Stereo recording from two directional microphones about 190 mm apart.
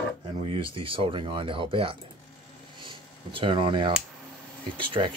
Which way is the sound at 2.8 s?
25° right (ahead or behind).